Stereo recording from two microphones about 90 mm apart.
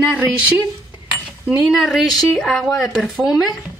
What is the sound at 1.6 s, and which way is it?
Speech, 5° right (ahead or behind).